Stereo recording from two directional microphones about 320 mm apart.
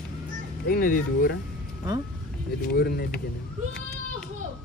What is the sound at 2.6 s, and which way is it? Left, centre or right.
Speech, left.